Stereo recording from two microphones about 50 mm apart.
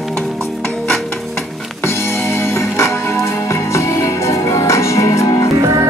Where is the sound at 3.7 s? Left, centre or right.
Left.